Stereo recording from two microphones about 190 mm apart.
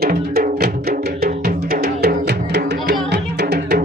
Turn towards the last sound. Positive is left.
turn(degrees=-60)  # may be behind; listen again after turning